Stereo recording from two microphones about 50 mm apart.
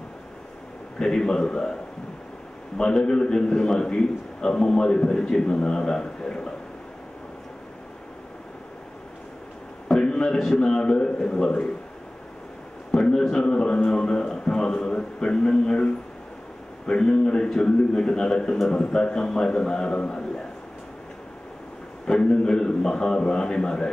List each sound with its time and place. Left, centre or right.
0.9 s a man's voice: centre
2.8 s a man's voice: centre
9.8 s a man's voice: centre
12.9 s a man's voice: centre
22.0 s a man's voice: centre